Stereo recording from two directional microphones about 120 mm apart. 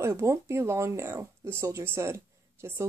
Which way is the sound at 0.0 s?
25° right (ahead or behind).